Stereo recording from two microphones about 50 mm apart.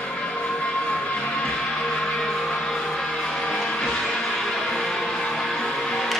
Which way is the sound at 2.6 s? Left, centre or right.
Centre.